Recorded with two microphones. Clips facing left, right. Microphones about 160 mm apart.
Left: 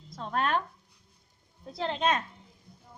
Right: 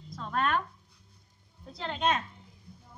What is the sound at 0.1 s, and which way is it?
Speech, 30° left (ahead or behind).